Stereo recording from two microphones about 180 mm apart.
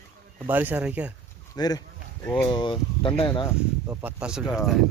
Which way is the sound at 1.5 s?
20° left (ahead or behind).